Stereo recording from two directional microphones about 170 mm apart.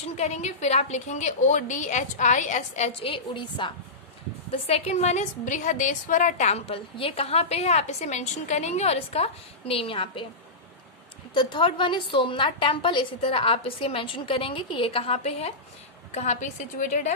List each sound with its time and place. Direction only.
0.2 s a woman's voice: 40° left (ahead or behind)
11.3 s a woman's voice: 30° left (ahead or behind); by 17.1 s 45° left (ahead or behind)